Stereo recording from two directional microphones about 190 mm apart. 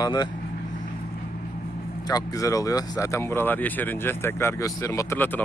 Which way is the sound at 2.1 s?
15° left (ahead or behind).